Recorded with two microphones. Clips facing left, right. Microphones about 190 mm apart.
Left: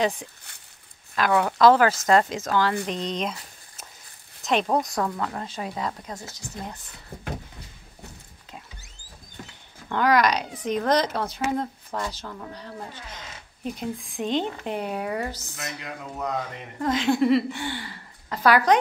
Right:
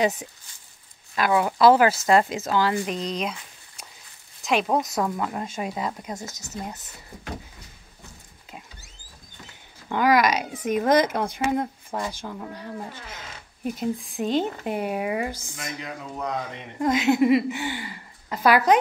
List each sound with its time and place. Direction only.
1.1 s speech: 10° right (ahead or behind)
4.4 s speech: 5° right (ahead or behind)
5.0 s speech: 15° right (ahead or behind)
6.2 s speech: 45° right (ahead or behind)
6.5 s speech: 5° right (ahead or behind)
9.8 s speech: 10° right (ahead or behind)